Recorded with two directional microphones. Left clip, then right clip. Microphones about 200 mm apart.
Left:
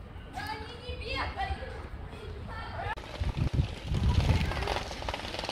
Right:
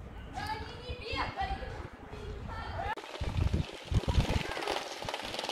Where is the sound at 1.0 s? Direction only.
40° left (ahead or behind).